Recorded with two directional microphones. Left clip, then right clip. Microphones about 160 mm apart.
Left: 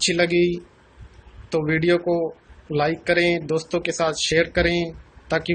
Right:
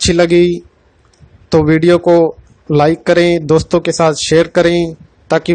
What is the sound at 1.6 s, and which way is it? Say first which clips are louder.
Speech: right 9 dB; 65° right (ahead or behind).